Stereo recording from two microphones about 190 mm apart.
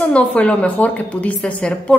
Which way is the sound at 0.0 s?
5° left (ahead or behind).